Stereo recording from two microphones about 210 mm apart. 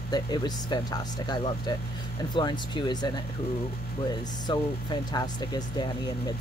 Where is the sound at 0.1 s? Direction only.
20° left (ahead or behind).